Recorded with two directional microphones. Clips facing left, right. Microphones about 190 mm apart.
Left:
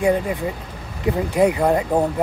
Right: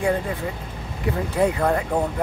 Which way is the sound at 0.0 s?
20° left (ahead or behind).